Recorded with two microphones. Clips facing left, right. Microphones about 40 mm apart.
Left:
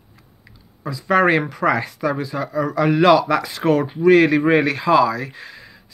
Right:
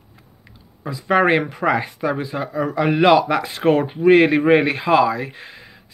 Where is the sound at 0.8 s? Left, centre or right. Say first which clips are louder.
Even; right.